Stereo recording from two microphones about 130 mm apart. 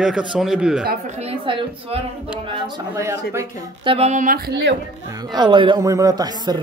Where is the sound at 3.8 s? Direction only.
45° right (ahead or behind).